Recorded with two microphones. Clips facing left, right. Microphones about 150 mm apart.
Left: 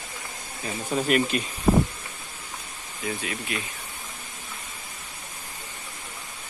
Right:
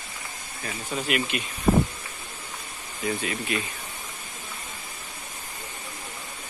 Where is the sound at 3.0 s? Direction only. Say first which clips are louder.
Right 3 dB; centre (ahead or behind).